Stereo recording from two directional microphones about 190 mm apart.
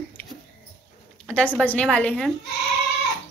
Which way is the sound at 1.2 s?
5° left (ahead or behind).